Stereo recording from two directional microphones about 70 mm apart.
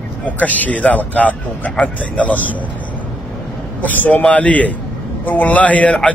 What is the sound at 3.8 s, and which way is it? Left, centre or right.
A man's voice, left.